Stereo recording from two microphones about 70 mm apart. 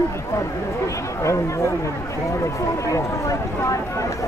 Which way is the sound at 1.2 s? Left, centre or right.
Left.